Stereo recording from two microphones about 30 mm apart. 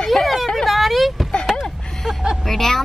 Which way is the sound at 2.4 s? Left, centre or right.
Centre.